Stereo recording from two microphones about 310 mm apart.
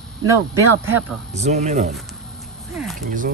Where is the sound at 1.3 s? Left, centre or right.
Right.